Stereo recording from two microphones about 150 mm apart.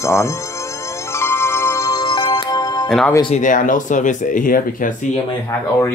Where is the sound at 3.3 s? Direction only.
60° left (ahead or behind).